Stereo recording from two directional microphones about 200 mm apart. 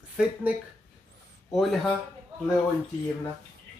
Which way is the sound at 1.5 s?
Centre (ahead or behind).